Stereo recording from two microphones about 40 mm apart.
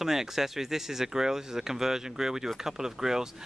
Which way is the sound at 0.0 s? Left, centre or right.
Centre.